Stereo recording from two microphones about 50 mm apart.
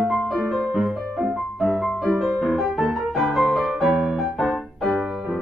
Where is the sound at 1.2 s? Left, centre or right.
Centre.